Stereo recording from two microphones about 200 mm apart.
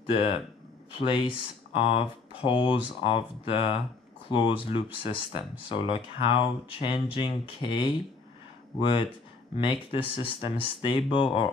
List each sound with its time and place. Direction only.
0.0 s speech: 25° left (ahead or behind)